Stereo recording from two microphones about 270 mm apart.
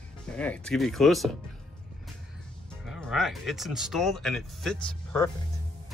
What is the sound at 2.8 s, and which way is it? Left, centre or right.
Speech, centre.